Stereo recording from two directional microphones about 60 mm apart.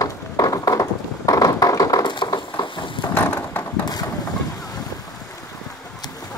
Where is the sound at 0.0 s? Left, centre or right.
Left.